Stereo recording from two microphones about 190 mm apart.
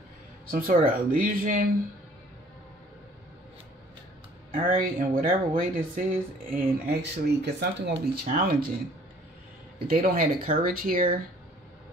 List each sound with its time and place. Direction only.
0.5 s speech: 50° right (ahead or behind)
4.5 s speech: 45° right (ahead or behind)
6.5 s speech: 60° right (ahead or behind)
8.0 s speech: 50° right (ahead or behind)
9.8 s speech: 50° right (ahead or behind)